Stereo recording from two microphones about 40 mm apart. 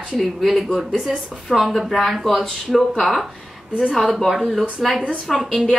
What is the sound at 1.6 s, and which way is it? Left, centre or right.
A woman's voice, centre.